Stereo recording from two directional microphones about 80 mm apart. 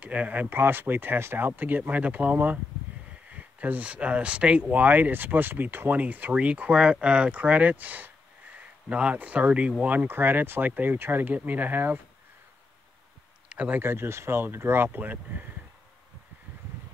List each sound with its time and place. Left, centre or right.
0.0 s speech: centre
13.5 s a sound: centre
13.7 s speech: right